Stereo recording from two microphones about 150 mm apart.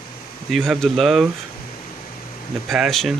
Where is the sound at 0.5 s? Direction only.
Centre (ahead or behind).